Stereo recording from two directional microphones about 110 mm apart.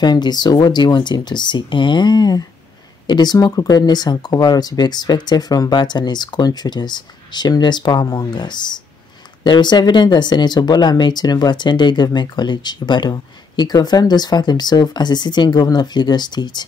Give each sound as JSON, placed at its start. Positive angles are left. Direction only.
{"t": 0.0, "sound": "speech", "side_deg": 40}